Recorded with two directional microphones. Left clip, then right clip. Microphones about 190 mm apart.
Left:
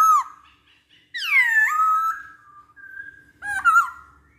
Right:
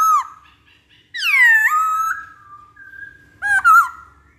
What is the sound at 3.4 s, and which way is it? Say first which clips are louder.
Owl: right 8 dB; 20° right (ahead or behind).